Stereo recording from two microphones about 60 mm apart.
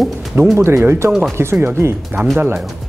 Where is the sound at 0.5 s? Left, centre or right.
Right.